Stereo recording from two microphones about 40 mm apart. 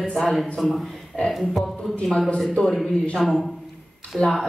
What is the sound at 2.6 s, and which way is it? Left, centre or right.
Speech, centre.